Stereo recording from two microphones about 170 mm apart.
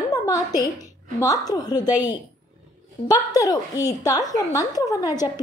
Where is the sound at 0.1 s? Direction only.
20° left (ahead or behind).